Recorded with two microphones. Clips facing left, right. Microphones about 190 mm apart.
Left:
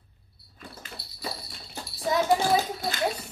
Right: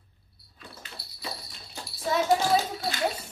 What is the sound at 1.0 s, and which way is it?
Music, 25° left (ahead or behind).